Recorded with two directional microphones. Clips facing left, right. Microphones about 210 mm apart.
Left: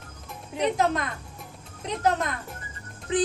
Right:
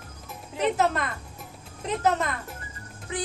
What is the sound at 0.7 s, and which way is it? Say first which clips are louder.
Speech: even; 5° right (ahead or behind).